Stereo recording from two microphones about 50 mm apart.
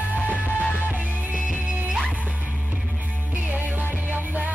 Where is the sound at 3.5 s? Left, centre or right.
Right.